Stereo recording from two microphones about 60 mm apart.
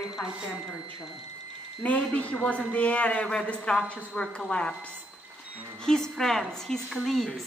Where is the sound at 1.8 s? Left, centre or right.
Left.